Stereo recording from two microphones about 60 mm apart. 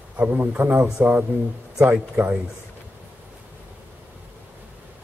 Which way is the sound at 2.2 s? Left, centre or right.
Right.